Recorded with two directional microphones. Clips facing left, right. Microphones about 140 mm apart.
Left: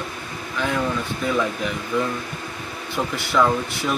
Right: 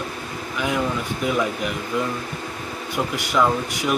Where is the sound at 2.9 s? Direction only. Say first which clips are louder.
Left 1 dB; 15° right (ahead or behind).